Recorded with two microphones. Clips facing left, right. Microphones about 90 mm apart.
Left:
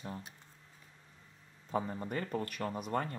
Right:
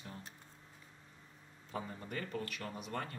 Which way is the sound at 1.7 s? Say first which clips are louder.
Left 7 dB; 35° left (ahead or behind).